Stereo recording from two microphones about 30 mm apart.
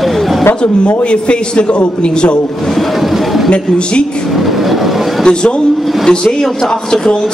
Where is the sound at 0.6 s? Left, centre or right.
Left.